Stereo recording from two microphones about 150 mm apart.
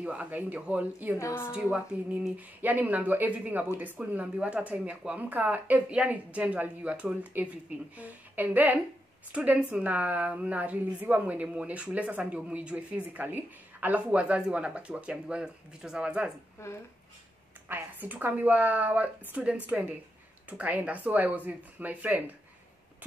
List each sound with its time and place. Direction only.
0.0 s a woman's voice: 10° right (ahead or behind)
1.1 s a woman's voice: 20° left (ahead or behind)
1.5 s a woman's voice: 10° right (ahead or behind)
16.6 s a woman's voice: 20° left (ahead or behind)
17.6 s a woman's voice: 10° right (ahead or behind)